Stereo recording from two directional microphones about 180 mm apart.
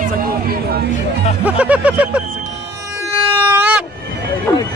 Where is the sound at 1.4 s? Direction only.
10° right (ahead or behind).